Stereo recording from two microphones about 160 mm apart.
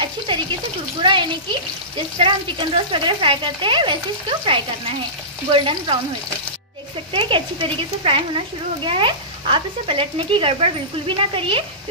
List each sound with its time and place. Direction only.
0.3 s speech: 30° right (ahead or behind)
7.1 s speech: 30° right (ahead or behind)